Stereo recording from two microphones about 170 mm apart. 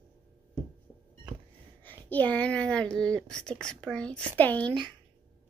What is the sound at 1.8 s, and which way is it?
Speech, 10° left (ahead or behind).